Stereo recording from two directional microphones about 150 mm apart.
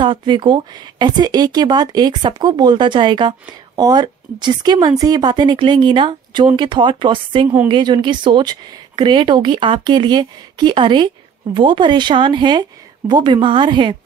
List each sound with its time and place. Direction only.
0.0 s speech: 30° right (ahead or behind)